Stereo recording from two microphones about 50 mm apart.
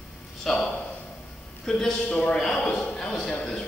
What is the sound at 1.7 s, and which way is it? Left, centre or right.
Speech, centre.